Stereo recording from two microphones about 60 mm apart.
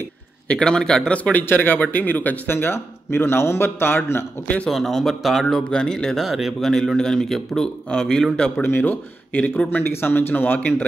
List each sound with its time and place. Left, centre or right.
0.5 s speech: centre
1.1 s speech: left
1.4 s speech: left
2.5 s a man's voice: left
4.6 s speech: centre
5.6 s speech: centre
6.2 s speech: centre
6.6 s speech: centre
8.5 s speech: left